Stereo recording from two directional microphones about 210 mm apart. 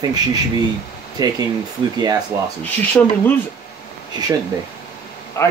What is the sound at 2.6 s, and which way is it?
Speech, 10° left (ahead or behind).